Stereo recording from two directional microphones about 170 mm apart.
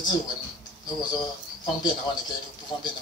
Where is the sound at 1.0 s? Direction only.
25° left (ahead or behind).